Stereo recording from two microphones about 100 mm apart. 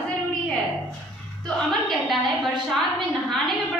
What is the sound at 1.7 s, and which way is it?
A woman's voice, centre (ahead or behind).